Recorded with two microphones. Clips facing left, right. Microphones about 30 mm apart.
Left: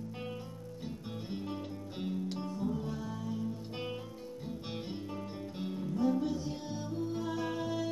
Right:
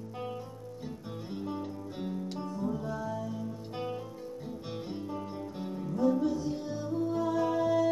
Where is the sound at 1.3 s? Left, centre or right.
Centre.